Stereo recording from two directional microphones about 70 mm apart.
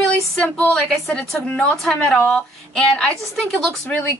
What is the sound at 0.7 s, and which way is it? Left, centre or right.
A woman's voice, centre.